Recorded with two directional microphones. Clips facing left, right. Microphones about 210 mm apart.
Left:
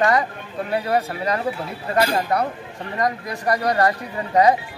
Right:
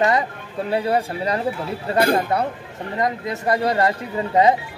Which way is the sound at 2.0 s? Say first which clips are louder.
Right 2 dB; 55° right (ahead or behind).